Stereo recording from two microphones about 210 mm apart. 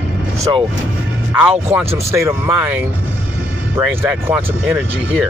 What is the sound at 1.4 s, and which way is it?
Speech, 10° right (ahead or behind).